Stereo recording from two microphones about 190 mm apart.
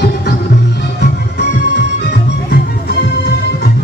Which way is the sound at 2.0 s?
60° left (ahead or behind).